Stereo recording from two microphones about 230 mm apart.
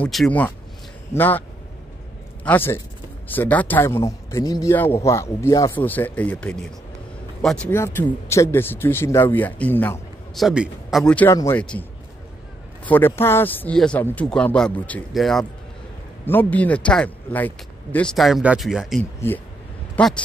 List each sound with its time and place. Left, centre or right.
0.0 s speech: centre
2.4 s speech: centre
12.8 s speech: centre